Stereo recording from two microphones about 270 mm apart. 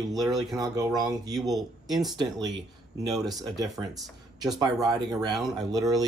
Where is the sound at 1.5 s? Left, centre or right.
Centre.